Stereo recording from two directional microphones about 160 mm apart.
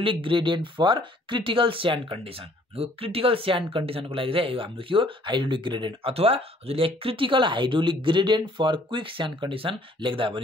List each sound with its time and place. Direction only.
0.0 s speech: 35° right (ahead or behind)